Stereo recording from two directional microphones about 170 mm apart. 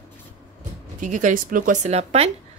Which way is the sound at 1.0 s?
50° right (ahead or behind).